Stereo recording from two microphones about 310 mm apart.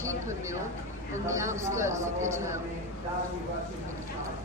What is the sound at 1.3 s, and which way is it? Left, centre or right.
Speech, centre.